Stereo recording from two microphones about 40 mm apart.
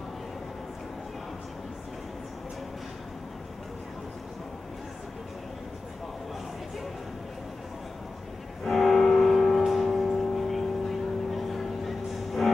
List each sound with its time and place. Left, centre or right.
8.6 s music: centre